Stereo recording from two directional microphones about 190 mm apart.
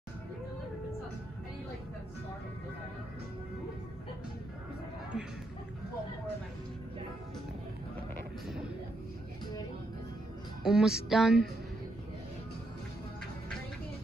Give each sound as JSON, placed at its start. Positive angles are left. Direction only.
{"t": 5.1, "sound": "a sound", "side_deg": 0}
{"t": 10.6, "sound": "music", "side_deg": -5}
{"t": 11.1, "sound": "speech", "side_deg": 0}